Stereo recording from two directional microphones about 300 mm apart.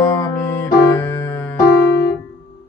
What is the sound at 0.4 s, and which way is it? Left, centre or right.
Music, centre.